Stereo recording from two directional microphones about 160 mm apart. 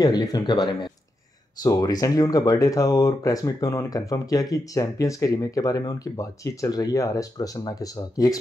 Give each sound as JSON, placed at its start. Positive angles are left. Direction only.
{"t": 0.0, "sound": "speech", "side_deg": 25}